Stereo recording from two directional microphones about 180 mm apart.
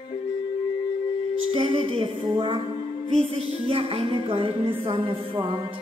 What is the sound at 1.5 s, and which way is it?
Music, 30° right (ahead or behind).